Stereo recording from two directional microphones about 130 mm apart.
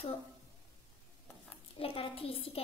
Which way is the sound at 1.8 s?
45° left (ahead or behind).